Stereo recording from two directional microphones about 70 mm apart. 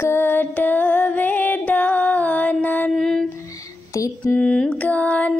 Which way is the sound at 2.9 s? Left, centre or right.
Centre.